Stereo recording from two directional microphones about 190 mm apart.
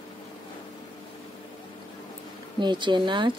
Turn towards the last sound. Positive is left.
turn(degrees=-25)  # may be behind; listen again after turning